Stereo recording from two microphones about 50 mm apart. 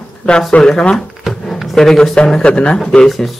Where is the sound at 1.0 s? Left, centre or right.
Centre.